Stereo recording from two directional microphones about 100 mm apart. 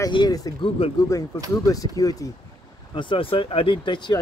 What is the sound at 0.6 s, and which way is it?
Speech, 70° left (ahead or behind).